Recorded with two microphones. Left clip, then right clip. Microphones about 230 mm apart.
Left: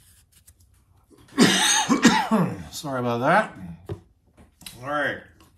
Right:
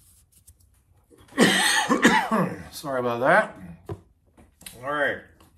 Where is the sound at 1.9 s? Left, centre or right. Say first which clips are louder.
Even; left.